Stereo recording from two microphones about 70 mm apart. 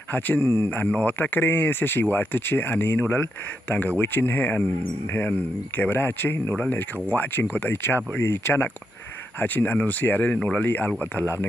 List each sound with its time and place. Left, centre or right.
0.1 s speech: left